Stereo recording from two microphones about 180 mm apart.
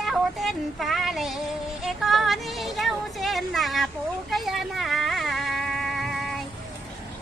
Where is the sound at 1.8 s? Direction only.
Centre (ahead or behind).